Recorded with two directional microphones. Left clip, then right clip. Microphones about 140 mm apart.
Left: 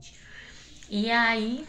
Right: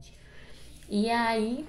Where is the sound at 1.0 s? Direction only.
30° right (ahead or behind).